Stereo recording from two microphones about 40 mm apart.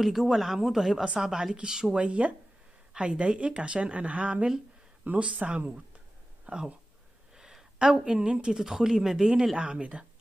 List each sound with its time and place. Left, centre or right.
0.0 s speech: centre
2.0 s speech: right
7.3 s speech: centre
8.5 s speech: centre
9.6 s speech: right